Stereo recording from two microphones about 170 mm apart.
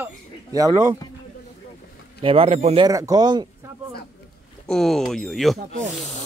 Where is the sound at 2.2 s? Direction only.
35° right (ahead or behind).